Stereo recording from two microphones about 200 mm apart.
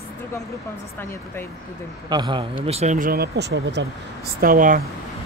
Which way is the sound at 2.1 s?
25° right (ahead or behind).